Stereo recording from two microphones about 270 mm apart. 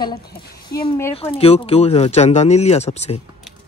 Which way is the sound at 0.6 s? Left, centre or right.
Centre.